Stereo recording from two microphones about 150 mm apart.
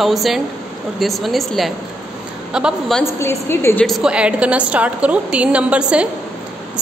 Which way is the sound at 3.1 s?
15° left (ahead or behind).